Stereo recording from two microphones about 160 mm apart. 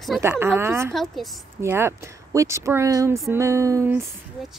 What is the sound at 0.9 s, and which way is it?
Speech, centre (ahead or behind).